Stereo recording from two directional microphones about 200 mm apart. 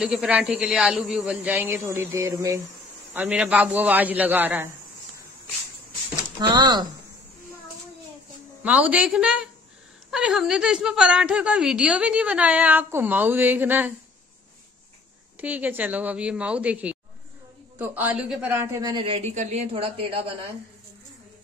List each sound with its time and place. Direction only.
0.0 s a man's voice: 5° right (ahead or behind)
6.5 s a woman's voice: 20° right (ahead or behind)
8.6 s a woman's voice: 5° right (ahead or behind)
15.4 s a man's voice: 10° right (ahead or behind); by 20.3 s 25° right (ahead or behind)